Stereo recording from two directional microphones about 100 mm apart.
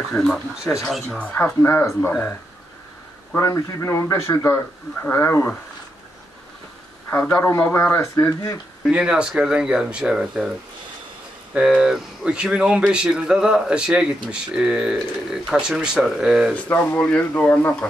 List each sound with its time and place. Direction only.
0.1 s speech: 5° left (ahead or behind)
1.2 s speech: 15° left (ahead or behind)
3.3 s speech: 30° left (ahead or behind)
7.1 s a man's voice: 20° left (ahead or behind)
8.3 s speech: 35° left (ahead or behind)
8.8 s speech: 10° right (ahead or behind)
11.5 s speech: 5° right (ahead or behind)
16.6 s speech: 20° left (ahead or behind)